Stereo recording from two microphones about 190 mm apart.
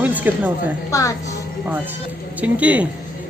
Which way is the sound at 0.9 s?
15° left (ahead or behind).